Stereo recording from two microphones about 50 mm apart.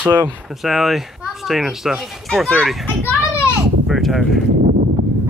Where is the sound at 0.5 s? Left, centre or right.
Centre.